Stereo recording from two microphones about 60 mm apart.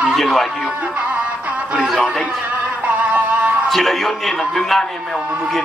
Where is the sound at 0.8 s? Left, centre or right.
Right.